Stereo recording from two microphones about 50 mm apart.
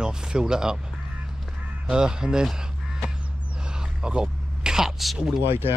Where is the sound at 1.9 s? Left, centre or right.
Centre.